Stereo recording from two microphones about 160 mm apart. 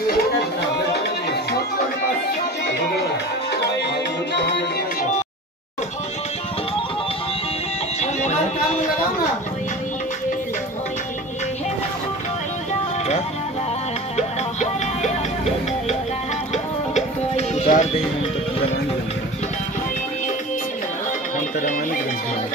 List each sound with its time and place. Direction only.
4.4 s music: 90° left
8.0 s music: 45° left (ahead or behind)
14.1 s music: 45° left (ahead or behind)
16.5 s music: 45° left (ahead or behind)
21.5 s a sound: 55° left (ahead or behind)